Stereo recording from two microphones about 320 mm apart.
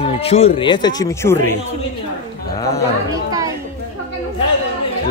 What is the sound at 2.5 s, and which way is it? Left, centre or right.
Speech, centre.